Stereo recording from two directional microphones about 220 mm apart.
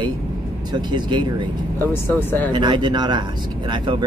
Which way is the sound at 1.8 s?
10° left (ahead or behind).